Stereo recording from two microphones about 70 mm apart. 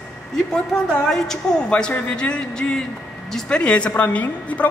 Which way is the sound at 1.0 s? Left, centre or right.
Centre.